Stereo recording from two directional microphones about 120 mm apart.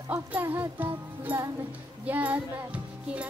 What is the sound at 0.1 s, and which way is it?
Speech, 15° right (ahead or behind).